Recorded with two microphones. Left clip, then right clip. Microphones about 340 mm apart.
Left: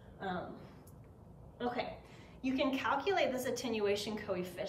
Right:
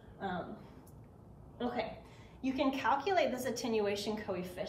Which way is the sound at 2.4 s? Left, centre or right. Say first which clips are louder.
Right 1 dB; centre.